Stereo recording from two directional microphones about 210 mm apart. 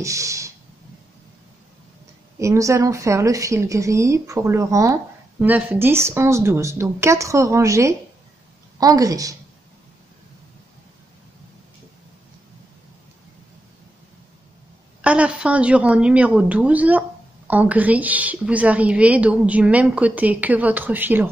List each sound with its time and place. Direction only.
0.0 s a sound: 15° right (ahead or behind)
2.3 s a woman's voice: 15° right (ahead or behind)
15.0 s a woman's voice: 5° right (ahead or behind)